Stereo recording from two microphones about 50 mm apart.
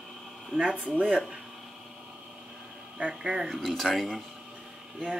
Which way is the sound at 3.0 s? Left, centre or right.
Right.